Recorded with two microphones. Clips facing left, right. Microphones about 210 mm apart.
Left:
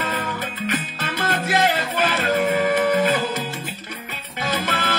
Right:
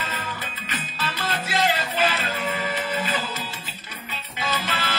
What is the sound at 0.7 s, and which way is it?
Music, 50° left (ahead or behind).